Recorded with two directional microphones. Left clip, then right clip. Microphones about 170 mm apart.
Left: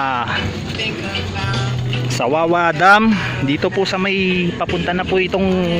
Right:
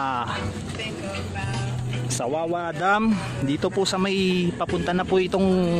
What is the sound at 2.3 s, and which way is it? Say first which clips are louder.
Speech: left 12 dB; 20° left (ahead or behind).